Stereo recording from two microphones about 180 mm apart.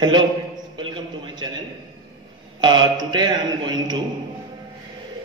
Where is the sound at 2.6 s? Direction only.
25° right (ahead or behind).